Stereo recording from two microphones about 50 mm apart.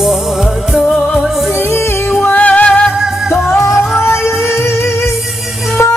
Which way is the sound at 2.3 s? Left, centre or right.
Left.